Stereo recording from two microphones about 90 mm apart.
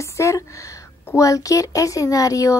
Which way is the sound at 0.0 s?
35° left (ahead or behind).